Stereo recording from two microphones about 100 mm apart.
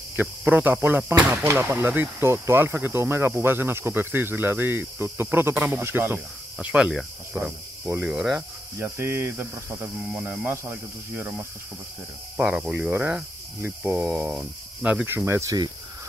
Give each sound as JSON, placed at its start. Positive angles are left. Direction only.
{"t": 0.4, "sound": "speech", "side_deg": -15}
{"t": 7.3, "sound": "speech", "side_deg": -20}
{"t": 8.0, "sound": "speech", "side_deg": -5}
{"t": 8.7, "sound": "speech", "side_deg": -20}
{"t": 15.1, "sound": "speech", "side_deg": -25}